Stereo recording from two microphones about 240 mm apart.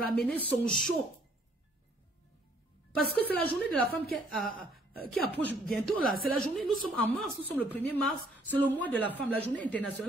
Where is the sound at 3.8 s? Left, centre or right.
Left.